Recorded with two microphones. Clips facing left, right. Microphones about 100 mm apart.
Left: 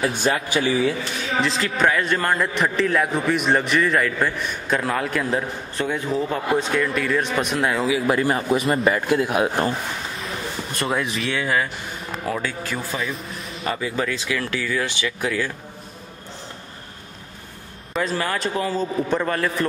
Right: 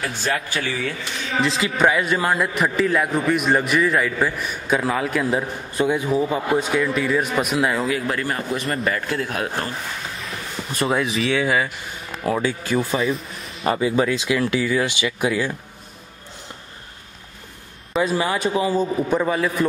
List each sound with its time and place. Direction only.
0.0 s speech: 20° left (ahead or behind)
1.3 s a man's voice: centre (ahead or behind)
8.1 s speech: 20° left (ahead or behind)
10.1 s speech: centre (ahead or behind)
12.3 s speech: 15° right (ahead or behind)
13.0 s a sound: centre (ahead or behind)
13.7 s speech: 15° right (ahead or behind)
17.9 s speech: 10° right (ahead or behind)